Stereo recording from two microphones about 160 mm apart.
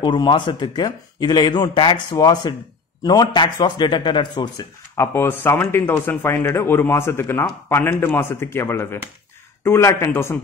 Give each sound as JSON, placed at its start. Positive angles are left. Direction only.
{"t": 0.0, "sound": "speech", "side_deg": 30}
{"t": 4.9, "sound": "speech", "side_deg": 15}